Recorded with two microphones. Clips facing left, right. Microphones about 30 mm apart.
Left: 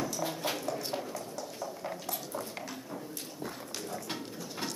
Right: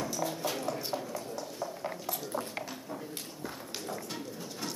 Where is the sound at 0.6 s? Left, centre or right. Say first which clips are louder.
Right 1 dB; centre.